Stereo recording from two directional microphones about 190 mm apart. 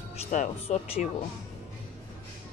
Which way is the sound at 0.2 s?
35° left (ahead or behind).